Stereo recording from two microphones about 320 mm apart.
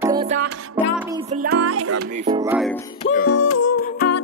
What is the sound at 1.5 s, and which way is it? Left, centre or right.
Music, right.